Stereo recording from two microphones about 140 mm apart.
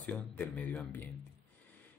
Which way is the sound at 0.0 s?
10° left (ahead or behind).